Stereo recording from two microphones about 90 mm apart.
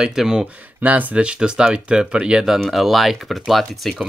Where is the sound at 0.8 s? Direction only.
20° right (ahead or behind).